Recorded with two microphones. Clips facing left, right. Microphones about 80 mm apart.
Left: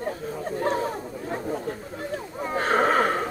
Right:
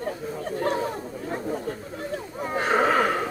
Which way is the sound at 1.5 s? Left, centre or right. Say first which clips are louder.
Even; left.